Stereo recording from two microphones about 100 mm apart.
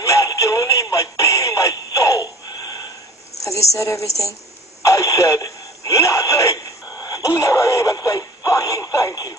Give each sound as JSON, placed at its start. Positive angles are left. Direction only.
{"t": 0.0, "sound": "synthetic singing", "side_deg": 35}
{"t": 3.7, "sound": "a woman's voice", "side_deg": 30}
{"t": 4.8, "sound": "radio", "side_deg": 35}